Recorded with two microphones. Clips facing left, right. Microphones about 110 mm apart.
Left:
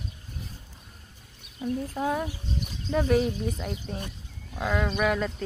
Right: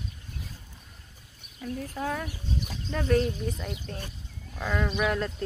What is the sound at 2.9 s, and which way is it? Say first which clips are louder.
Speech: left 2 dB; 10° left (ahead or behind).